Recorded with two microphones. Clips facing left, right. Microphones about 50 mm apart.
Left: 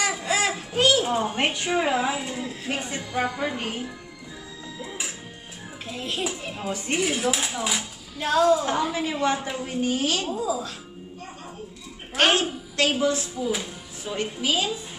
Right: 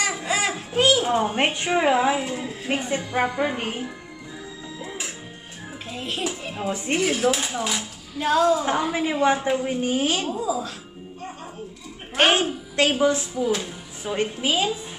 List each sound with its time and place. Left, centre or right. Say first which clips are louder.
0.0 s a sound: even; centre; by 1.8 s right
1.8 s a woman's voice: right 5 dB; centre
2.8 s a woman's voice: right 3 dB; right
5.9 s speech: right 1 dB; centre
9.1 s a woman's voice: right 5 dB; centre
10.2 s speech: right 1 dB; centre
12.2 s a woman's voice: right 2 dB; right